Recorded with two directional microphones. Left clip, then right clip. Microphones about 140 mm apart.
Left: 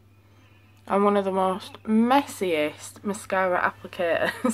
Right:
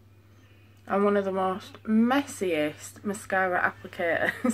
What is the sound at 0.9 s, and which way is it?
Speech, 35° left (ahead or behind).